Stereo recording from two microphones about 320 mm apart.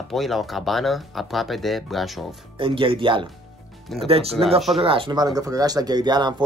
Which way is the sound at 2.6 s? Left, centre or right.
Centre.